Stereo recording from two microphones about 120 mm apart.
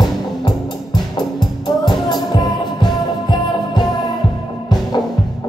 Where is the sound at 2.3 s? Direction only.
35° left (ahead or behind).